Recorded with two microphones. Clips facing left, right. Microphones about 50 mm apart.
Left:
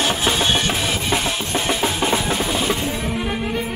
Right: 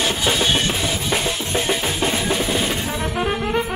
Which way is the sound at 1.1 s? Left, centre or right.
Centre.